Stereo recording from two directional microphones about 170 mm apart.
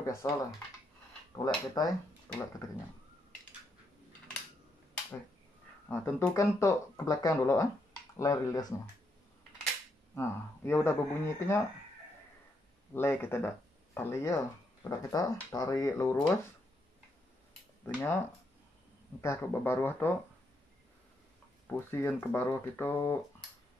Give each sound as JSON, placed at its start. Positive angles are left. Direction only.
{"t": 0.0, "sound": "speech", "side_deg": 15}
{"t": 1.3, "sound": "speech", "side_deg": 20}
{"t": 5.9, "sound": "speech", "side_deg": 15}
{"t": 10.1, "sound": "speech", "side_deg": 15}
{"t": 12.9, "sound": "speech", "side_deg": 15}
{"t": 17.8, "sound": "speech", "side_deg": 15}
{"t": 19.2, "sound": "speech", "side_deg": 15}
{"t": 21.6, "sound": "speech", "side_deg": 15}